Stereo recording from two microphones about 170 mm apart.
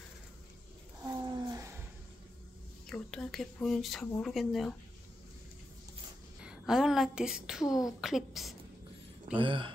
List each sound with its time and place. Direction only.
1.0 s a sound: 25° right (ahead or behind)
2.9 s speech: 5° left (ahead or behind)
6.4 s a woman's voice: 5° right (ahead or behind)
9.4 s speech: 30° right (ahead or behind)